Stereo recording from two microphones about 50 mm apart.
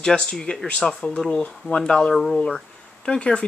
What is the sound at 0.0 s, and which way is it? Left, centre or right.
Speech, centre.